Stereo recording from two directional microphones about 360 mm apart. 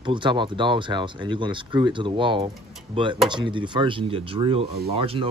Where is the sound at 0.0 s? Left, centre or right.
Centre.